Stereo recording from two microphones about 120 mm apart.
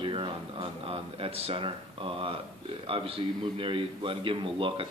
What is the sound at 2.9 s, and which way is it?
A man's voice, 50° right (ahead or behind).